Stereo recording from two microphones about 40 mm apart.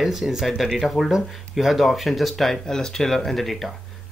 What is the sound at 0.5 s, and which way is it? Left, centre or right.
Speech, centre.